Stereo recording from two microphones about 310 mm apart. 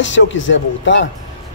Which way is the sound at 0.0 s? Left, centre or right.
Left.